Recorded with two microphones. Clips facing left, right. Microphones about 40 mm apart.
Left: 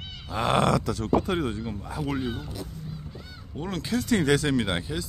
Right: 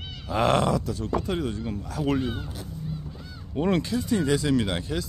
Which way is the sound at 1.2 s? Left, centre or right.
Left.